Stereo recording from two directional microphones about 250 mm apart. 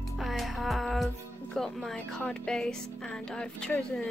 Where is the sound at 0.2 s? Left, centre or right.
Centre.